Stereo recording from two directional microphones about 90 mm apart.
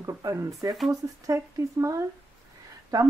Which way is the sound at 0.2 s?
35° right (ahead or behind).